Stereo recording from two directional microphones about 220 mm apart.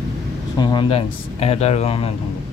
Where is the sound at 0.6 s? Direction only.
20° left (ahead or behind).